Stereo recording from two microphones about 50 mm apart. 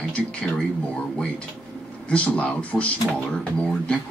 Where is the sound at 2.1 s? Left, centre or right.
Left.